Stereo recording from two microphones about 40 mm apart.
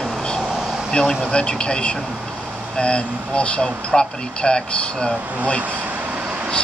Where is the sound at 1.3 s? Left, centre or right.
Left.